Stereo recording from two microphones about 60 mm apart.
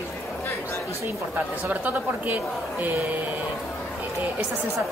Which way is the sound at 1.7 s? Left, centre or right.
Right.